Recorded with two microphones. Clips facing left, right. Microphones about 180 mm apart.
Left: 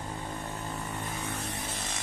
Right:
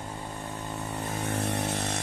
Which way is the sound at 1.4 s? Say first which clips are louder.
Right 8 dB; 70° right (ahead or behind).